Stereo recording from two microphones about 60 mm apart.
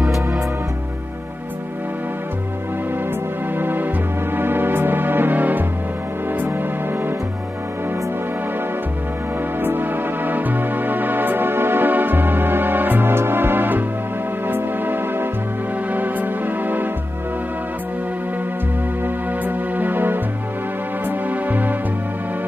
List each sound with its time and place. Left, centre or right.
3.5 s music: right
9.6 s music: right
19.4 s music: right
21.5 s music: right